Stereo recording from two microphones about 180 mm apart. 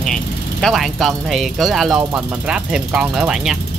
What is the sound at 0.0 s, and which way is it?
Speech, 5° left (ahead or behind).